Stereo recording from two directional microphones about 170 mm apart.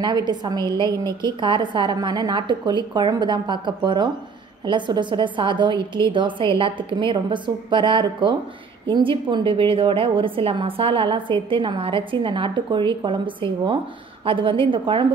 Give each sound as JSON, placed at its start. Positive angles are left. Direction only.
{"t": 0.0, "sound": "a woman's voice", "side_deg": -25}